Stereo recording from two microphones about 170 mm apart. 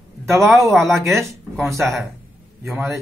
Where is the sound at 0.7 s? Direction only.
Centre (ahead or behind).